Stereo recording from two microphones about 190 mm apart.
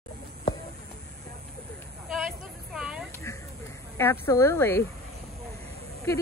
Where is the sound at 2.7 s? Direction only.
5° right (ahead or behind).